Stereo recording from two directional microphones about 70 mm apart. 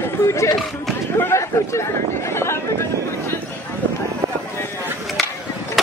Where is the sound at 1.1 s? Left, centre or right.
Left.